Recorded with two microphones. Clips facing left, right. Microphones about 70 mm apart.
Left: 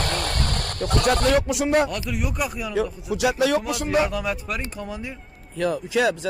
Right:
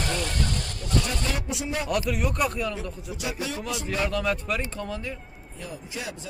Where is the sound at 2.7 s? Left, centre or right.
Left.